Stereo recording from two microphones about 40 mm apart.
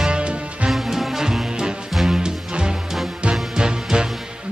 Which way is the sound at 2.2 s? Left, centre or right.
Centre.